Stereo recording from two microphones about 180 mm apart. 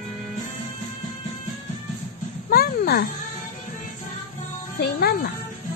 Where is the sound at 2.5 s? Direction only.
55° left (ahead or behind).